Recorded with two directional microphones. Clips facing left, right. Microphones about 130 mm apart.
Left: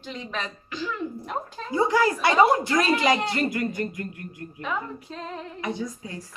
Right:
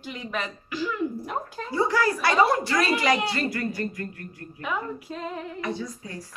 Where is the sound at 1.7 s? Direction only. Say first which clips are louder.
Left 2 dB; 20° left (ahead or behind).